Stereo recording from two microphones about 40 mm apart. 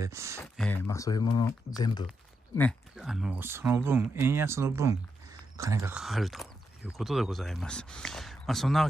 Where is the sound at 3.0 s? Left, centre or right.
Right.